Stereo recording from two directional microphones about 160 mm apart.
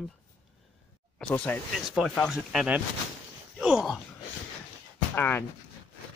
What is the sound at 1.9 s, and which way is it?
Speech, centre (ahead or behind).